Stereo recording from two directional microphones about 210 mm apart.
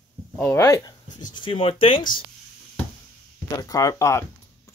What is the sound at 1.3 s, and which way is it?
Speech, 25° left (ahead or behind).